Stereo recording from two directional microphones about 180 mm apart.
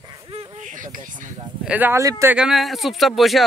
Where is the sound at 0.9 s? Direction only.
50° right (ahead or behind).